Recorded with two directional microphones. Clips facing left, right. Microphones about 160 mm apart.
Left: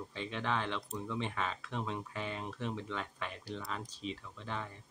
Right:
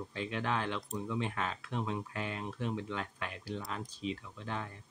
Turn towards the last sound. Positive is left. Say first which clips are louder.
# right 1 dB
turn(degrees=0)  # may be behind; listen again after turning